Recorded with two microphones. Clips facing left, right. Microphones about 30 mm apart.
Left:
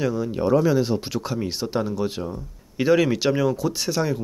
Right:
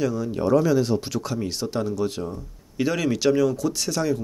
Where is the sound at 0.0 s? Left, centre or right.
Centre.